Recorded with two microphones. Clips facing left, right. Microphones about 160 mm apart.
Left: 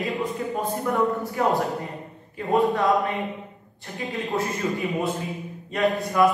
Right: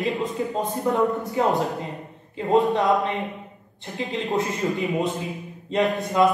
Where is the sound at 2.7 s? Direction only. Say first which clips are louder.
Right 1 dB; 20° right (ahead or behind).